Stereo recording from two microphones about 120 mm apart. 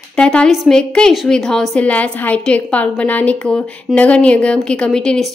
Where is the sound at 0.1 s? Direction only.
10° left (ahead or behind).